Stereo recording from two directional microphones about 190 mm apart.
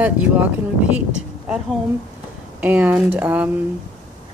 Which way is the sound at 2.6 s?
10° right (ahead or behind).